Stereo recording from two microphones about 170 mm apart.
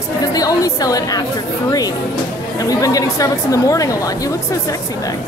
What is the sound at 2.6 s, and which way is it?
A woman's voice, 20° left (ahead or behind).